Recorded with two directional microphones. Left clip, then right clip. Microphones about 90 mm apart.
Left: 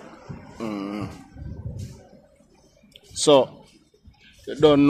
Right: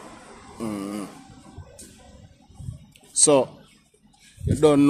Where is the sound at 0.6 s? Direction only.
40° right (ahead or behind).